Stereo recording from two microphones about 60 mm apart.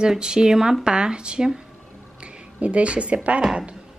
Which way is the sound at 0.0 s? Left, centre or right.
Centre.